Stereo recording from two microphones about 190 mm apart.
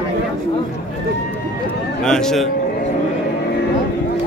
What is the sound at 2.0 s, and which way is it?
Speech, 5° left (ahead or behind).